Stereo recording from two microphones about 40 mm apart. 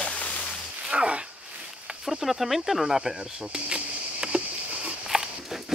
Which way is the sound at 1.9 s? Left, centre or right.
Centre.